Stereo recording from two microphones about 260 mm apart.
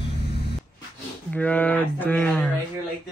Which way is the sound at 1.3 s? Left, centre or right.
Centre.